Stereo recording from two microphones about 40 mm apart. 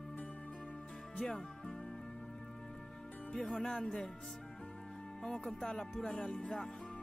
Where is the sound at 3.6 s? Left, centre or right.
Centre.